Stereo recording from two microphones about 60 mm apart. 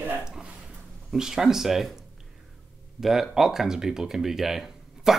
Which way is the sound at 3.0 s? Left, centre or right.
Centre.